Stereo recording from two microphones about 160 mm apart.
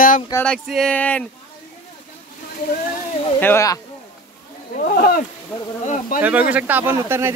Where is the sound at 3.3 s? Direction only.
15° left (ahead or behind).